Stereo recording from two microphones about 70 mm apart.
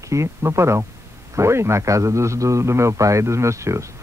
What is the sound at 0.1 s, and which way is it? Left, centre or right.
A man's voice, right.